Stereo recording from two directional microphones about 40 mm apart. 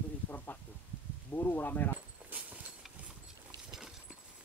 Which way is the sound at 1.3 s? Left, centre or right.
Left.